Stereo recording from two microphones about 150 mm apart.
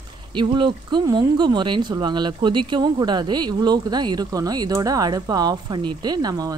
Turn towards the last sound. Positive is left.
turn(degrees=-25)  # may be behind; listen again after turning